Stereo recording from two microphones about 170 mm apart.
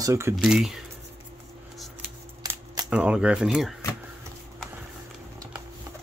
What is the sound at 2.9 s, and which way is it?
Speech, 5° right (ahead or behind).